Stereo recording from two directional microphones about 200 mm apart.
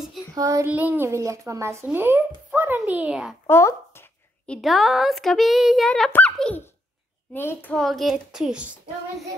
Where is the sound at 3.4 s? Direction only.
10° left (ahead or behind).